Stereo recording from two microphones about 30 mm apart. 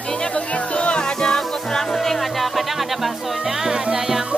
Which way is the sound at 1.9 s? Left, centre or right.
Centre.